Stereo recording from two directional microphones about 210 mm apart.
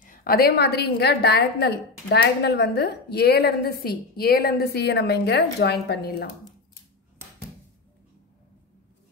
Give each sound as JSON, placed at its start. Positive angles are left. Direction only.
{"t": 0.0, "sound": "a woman's voice", "side_deg": 45}